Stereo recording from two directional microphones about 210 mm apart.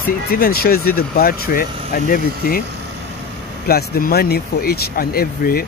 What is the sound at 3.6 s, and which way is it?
Speech, 45° left (ahead or behind).